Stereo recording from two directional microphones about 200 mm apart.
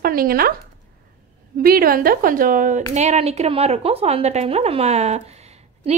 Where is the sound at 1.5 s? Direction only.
45° right (ahead or behind).